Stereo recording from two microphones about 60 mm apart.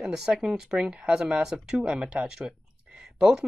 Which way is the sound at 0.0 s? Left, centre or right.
Centre.